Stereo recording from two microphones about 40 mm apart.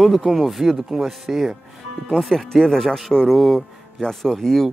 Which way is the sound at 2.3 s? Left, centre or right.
Centre.